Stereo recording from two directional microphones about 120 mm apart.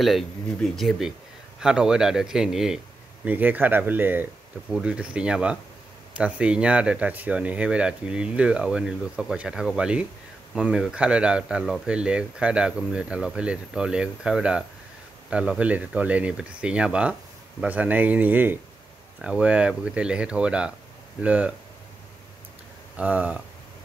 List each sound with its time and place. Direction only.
0.0 s speech: centre (ahead or behind)
22.9 s speech: 10° right (ahead or behind)